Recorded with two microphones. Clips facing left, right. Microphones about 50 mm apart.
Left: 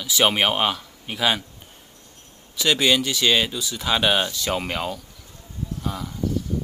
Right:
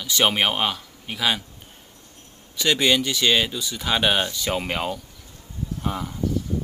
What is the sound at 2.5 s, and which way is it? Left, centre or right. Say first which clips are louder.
Speech: even; centre.